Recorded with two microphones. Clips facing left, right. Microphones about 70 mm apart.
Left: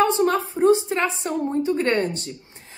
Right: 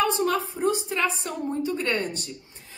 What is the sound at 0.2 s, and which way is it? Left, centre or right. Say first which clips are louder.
A woman's voice: left 5 dB; left.